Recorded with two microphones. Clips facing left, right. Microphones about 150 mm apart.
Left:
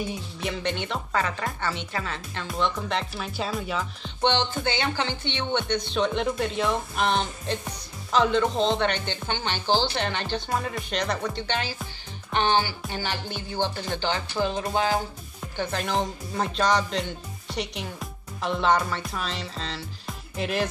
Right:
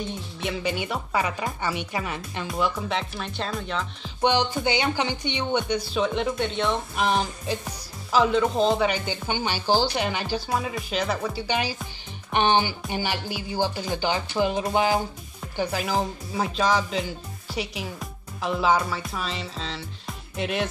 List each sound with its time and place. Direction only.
0.0 s speech: 10° left (ahead or behind)
0.5 s speech: 5° right (ahead or behind)
2.4 s speech: 5° right (ahead or behind)
4.2 s speech: 10° right (ahead or behind)